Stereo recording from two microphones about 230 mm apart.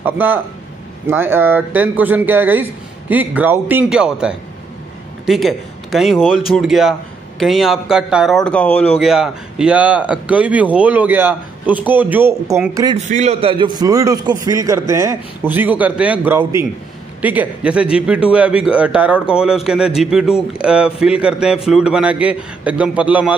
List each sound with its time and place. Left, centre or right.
0.0 s a man's voice: centre
12.9 s a man's voice: right; by 23.3 s centre